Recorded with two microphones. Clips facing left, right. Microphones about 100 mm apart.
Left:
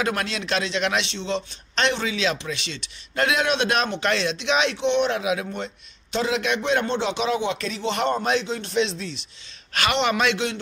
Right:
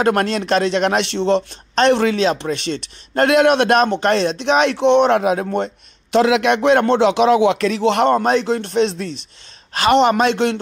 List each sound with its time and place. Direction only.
0.0 s a man's voice: 50° right (ahead or behind)
1.8 s a man's voice: 45° right (ahead or behind)
4.7 s a man's voice: 60° right (ahead or behind); by 5.5 s 45° right (ahead or behind)
6.1 s a man's voice: 70° right (ahead or behind); by 9.2 s 50° right (ahead or behind)
9.8 s speech: 40° right (ahead or behind)